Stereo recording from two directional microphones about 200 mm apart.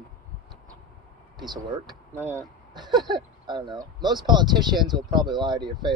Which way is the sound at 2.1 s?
10° left (ahead or behind).